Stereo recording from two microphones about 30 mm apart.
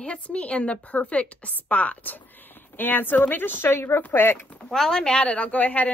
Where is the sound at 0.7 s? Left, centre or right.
Left.